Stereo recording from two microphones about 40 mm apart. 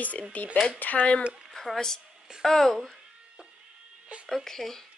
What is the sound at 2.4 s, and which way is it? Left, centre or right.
Speech, centre.